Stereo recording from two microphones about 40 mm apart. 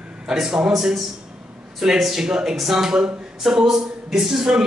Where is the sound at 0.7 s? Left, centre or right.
Centre.